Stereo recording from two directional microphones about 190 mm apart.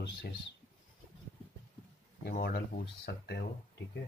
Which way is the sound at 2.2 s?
50° left (ahead or behind).